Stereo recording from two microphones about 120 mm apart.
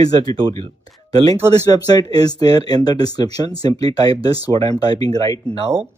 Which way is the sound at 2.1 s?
35° left (ahead or behind).